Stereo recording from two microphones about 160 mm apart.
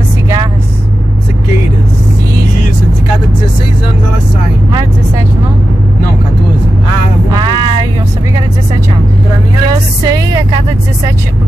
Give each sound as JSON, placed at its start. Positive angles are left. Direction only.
{"t": 7.2, "sound": "vehicle", "side_deg": -25}
{"t": 9.7, "sound": "music", "side_deg": -25}